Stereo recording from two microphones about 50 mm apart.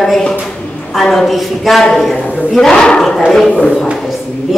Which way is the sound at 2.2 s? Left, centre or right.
Left.